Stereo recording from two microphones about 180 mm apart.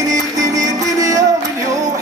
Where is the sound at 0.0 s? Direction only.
20° right (ahead or behind).